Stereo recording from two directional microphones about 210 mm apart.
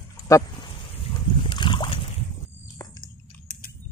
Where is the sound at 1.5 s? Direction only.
20° left (ahead or behind).